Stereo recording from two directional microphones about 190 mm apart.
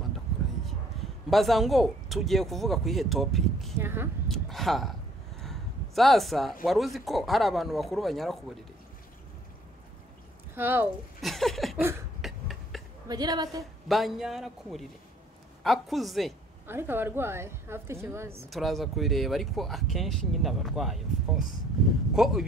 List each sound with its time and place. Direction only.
1.3 s speech: centre (ahead or behind)
3.7 s a woman's voice: 10° right (ahead or behind)
4.3 s speech: centre (ahead or behind)
10.5 s speech: 10° right (ahead or behind)
12.2 s cough: centre (ahead or behind)
13.1 s a woman's voice: 20° right (ahead or behind)
13.8 s speech: centre (ahead or behind)
16.6 s a woman's voice: 10° right (ahead or behind)
18.5 s speech: centre (ahead or behind)